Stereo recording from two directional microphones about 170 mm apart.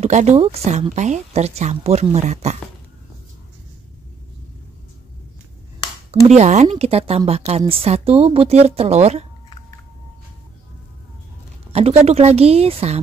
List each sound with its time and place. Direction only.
0.0 s a woman's voice: 45° right (ahead or behind)
6.2 s a woman's voice: 40° right (ahead or behind)
11.7 s a woman's voice: 35° right (ahead or behind)